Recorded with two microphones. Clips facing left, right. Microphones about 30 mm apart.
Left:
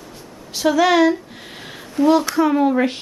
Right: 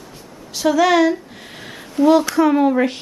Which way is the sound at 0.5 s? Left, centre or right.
Centre.